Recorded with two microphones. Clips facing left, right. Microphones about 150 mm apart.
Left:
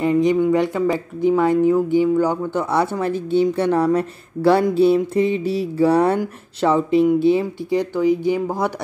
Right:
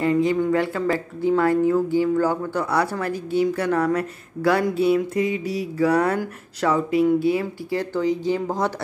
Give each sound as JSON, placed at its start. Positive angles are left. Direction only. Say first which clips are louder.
{"t": 0.0, "sound": "speech", "louder": "left 3 dB", "side_deg": 20}